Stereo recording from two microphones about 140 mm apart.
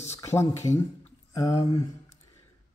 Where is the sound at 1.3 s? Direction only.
30° left (ahead or behind).